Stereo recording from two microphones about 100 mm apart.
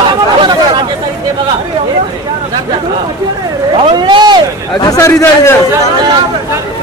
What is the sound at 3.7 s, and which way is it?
Speech, 55° right (ahead or behind).